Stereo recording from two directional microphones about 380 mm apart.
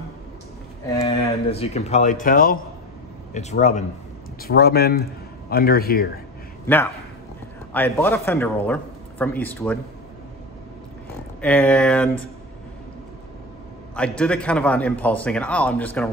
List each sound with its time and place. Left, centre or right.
1.0 s speech: centre
6.6 s a man's voice: centre
11.4 s a man's voice: centre
13.9 s a man's voice: centre